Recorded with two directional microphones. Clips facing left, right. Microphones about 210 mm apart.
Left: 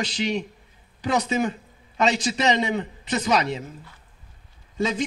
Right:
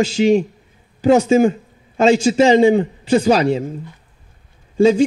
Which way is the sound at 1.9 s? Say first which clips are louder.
Right 10 dB; 30° right (ahead or behind).